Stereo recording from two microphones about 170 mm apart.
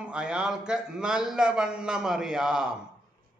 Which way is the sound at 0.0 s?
5° right (ahead or behind).